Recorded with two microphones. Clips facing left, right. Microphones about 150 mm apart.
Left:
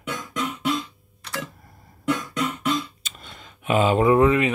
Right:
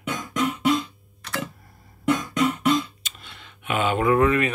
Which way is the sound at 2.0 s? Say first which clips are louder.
Right 3 dB; centre (ahead or behind).